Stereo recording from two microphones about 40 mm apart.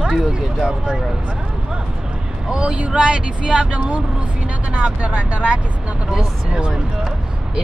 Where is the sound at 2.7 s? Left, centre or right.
Right.